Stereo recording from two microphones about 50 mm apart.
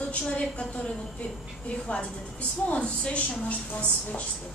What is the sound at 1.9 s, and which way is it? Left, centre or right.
A woman's voice, left.